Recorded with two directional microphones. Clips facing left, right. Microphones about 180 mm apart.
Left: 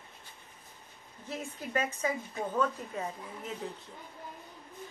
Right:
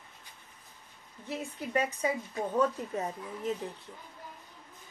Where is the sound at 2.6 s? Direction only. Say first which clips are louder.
Right 3 dB; 30° right (ahead or behind).